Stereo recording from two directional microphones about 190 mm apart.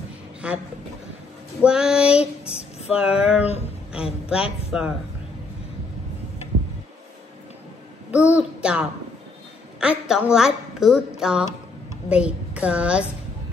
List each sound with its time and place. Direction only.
0.4 s a woman's voice: 5° right (ahead or behind)
1.6 s female singing: 5° right (ahead or behind)
2.9 s a woman's voice: 5° right (ahead or behind)
4.6 s a woman's voice: 5° right (ahead or behind)
8.1 s a child's voice: 5° right (ahead or behind)